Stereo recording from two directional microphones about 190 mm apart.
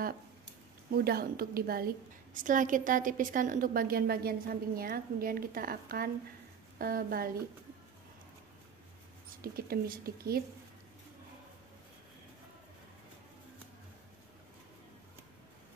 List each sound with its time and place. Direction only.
0.9 s a woman's voice: 55° right (ahead or behind)
9.4 s a woman's voice: 50° right (ahead or behind)